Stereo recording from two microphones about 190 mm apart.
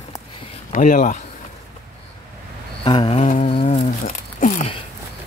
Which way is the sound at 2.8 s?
25° left (ahead or behind).